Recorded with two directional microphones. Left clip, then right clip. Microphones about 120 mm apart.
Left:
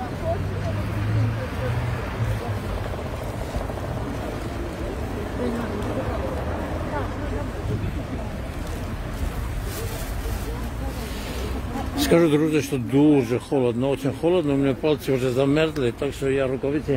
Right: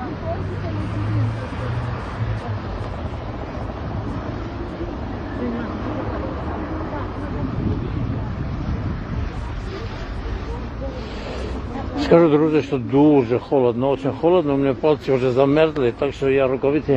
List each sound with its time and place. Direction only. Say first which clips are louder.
12.0 s speech: right 4 dB; 25° left (ahead or behind)
16.3 s speech: right 6 dB; 10° left (ahead or behind)